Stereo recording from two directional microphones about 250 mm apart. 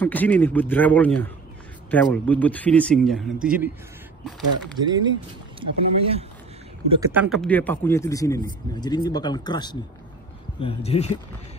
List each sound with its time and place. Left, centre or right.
0.0 s speech: centre
4.7 s speech: centre
6.9 s speech: centre; by 11.1 s left